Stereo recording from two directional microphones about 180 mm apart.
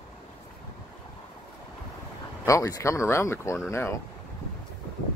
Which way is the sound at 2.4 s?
20° left (ahead or behind).